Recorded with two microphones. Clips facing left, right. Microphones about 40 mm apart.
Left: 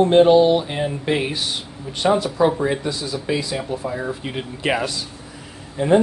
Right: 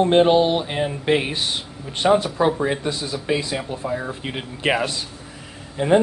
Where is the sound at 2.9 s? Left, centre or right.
Right.